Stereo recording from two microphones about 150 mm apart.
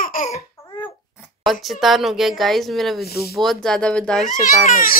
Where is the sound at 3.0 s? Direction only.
90° left.